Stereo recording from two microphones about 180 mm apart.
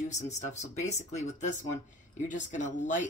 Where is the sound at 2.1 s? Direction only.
40° left (ahead or behind).